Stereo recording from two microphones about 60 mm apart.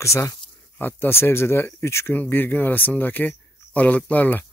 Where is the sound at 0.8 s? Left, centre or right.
Left.